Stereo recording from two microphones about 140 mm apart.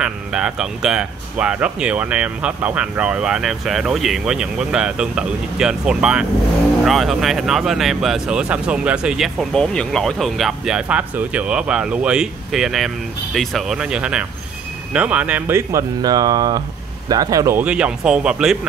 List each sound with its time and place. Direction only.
0.0 s speech: 5° right (ahead or behind); by 17.6 s 20° right (ahead or behind)
17.6 s speech: 10° right (ahead or behind)